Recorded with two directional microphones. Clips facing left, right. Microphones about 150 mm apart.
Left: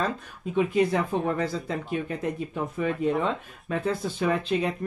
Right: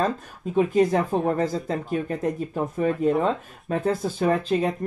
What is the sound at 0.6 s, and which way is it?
Speech, 40° right (ahead or behind).